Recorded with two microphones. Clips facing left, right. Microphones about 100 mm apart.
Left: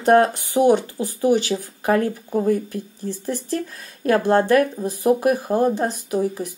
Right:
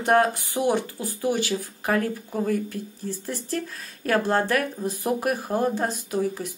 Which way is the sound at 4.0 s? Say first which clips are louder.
Left 5 dB; 20° left (ahead or behind).